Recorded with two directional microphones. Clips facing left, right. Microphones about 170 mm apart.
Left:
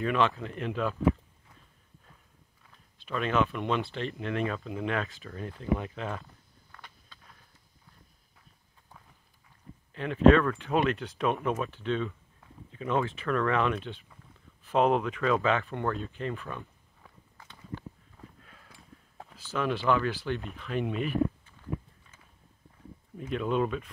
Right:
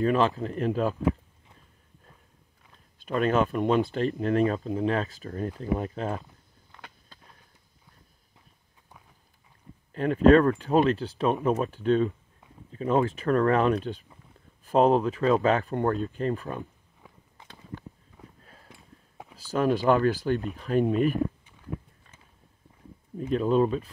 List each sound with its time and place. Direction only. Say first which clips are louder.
0.0 s speech: right 4 dB; 35° right (ahead or behind)
3.0 s speech: right 4 dB; 45° right (ahead or behind)
9.9 s speech: right 3 dB; 40° right (ahead or behind)
18.4 s a sound: right 2 dB; 35° right (ahead or behind)
18.7 s clip-clop: right 2 dB; 15° right (ahead or behind)
19.3 s speech: right 6 dB; 40° right (ahead or behind)
23.3 s speech: right 6 dB; 35° right (ahead or behind)